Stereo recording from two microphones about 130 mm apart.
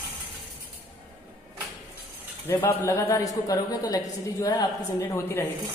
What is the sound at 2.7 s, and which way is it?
A woman's voice, 20° left (ahead or behind).